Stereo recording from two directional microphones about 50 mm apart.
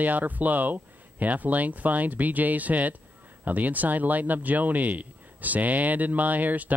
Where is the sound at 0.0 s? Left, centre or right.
Right.